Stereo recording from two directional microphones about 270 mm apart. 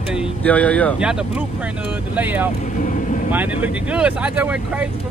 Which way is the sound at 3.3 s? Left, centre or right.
Centre.